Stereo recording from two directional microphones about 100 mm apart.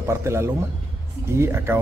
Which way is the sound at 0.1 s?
25° right (ahead or behind).